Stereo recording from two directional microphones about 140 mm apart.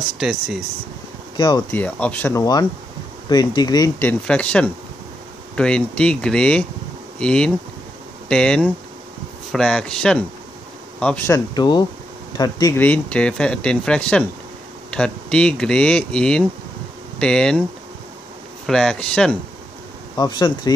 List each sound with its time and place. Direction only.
0.2 s speech: centre (ahead or behind)
1.3 s speech: 30° left (ahead or behind)
1.7 s speech: 10° left (ahead or behind)
2.3 s speech: 25° left (ahead or behind)
4.0 s speech: 10° left (ahead or behind)
11.2 s speech: 25° left (ahead or behind)
12.7 s speech: 10° left (ahead or behind)
18.7 s speech: 5° left (ahead or behind)
20.2 s speech: 30° left (ahead or behind)